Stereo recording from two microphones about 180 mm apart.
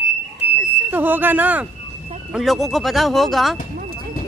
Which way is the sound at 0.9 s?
10° right (ahead or behind).